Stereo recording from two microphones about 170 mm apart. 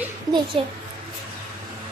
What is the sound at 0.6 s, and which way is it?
Speech, 30° right (ahead or behind).